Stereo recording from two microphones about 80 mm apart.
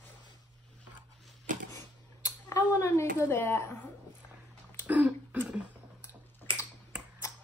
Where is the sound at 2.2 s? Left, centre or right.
Left.